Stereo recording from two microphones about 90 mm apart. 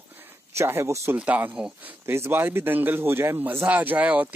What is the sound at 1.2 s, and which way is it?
Speech, 15° right (ahead or behind).